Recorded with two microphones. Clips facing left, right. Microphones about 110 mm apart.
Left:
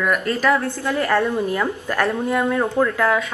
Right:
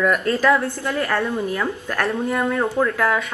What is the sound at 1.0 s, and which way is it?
Speech, centre (ahead or behind).